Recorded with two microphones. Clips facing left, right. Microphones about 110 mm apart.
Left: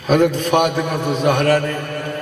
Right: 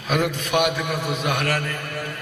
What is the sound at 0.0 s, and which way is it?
Mantra, 35° left (ahead or behind).